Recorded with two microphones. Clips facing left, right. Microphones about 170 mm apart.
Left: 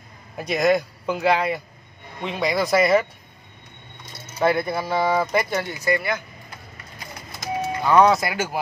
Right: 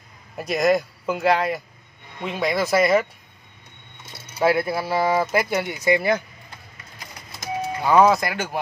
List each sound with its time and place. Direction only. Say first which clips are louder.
0.4 s speech: even; centre (ahead or behind)
4.4 s speech: right 1 dB; 5° right (ahead or behind)
5.9 s speech: right 5 dB; 35° right (ahead or behind)
7.8 s speech: even; 5° right (ahead or behind)